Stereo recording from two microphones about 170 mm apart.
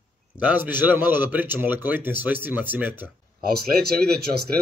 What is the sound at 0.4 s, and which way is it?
A man's voice, 10° right (ahead or behind).